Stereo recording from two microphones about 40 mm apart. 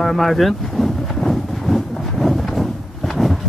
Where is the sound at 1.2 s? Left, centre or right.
Centre.